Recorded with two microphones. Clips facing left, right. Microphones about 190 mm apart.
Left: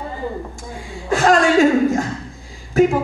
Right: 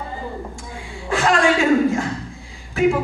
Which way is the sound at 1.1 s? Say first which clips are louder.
Left 4 dB; 40° left (ahead or behind).